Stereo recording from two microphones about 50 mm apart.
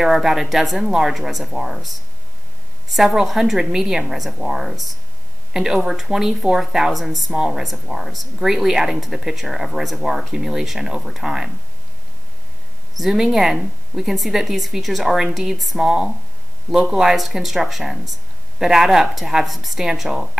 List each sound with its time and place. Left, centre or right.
0.0 s speech: centre
3.3 s a woman's voice: centre
13.0 s speech: centre
15.8 s a woman's voice: centre